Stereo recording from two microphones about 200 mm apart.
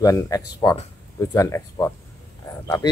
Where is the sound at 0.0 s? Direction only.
15° left (ahead or behind).